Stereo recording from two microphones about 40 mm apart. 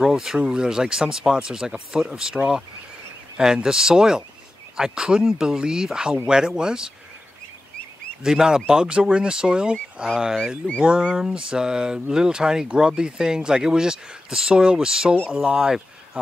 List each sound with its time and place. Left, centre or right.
0.0 s speech: centre
8.2 s speech: centre